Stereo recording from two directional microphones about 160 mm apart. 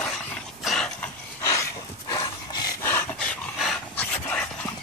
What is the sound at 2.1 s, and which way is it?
Dog, 25° left (ahead or behind).